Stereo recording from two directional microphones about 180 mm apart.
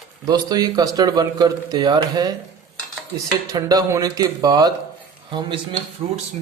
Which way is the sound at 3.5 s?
20° right (ahead or behind).